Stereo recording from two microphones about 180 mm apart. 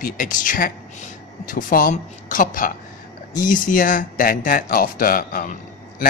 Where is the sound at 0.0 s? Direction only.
45° left (ahead or behind).